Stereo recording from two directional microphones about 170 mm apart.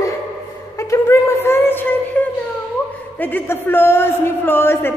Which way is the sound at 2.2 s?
10° left (ahead or behind).